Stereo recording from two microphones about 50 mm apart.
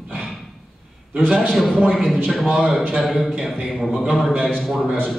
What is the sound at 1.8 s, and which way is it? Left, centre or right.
Speech, centre.